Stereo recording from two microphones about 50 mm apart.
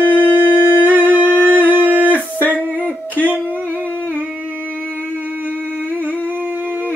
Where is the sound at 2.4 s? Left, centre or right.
Left.